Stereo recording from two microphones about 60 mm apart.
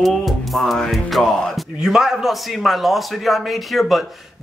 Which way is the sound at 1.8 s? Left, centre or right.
Centre.